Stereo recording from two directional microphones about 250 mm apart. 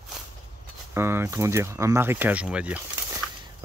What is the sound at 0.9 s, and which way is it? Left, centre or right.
Speech, centre.